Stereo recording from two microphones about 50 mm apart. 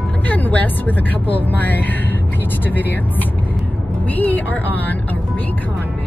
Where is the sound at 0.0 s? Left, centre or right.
Left.